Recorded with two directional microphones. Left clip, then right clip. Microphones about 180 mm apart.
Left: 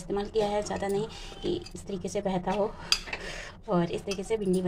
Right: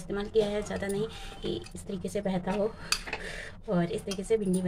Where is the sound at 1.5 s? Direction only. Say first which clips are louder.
Left 4 dB; 40° right (ahead or behind).